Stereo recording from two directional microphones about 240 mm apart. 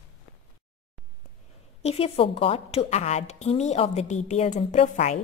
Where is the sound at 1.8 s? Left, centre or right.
Left.